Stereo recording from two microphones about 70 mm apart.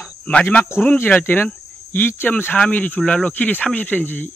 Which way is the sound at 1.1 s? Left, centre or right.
Left.